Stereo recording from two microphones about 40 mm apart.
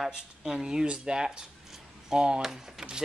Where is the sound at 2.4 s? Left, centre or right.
Centre.